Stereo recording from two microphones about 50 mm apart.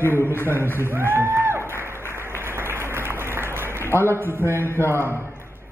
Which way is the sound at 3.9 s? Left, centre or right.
Left.